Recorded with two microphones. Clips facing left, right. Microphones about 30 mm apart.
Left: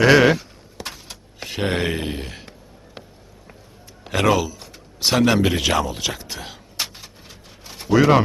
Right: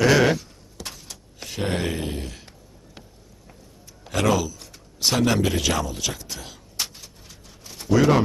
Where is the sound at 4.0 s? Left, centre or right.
Left.